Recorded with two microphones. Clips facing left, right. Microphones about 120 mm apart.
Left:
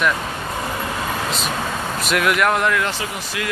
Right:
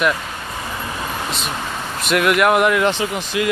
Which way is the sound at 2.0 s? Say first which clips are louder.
Right 3 dB; centre (ahead or behind).